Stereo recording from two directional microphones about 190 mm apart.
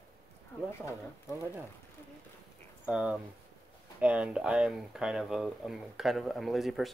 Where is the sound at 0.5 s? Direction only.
10° left (ahead or behind).